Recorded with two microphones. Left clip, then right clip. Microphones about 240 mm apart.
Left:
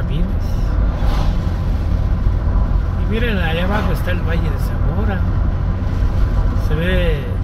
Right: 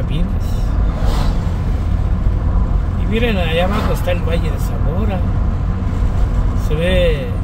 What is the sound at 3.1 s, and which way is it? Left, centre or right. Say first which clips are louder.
Speech: right 3 dB; centre.